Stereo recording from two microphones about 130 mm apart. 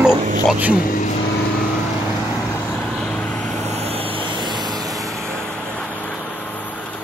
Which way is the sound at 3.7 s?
50° right (ahead or behind).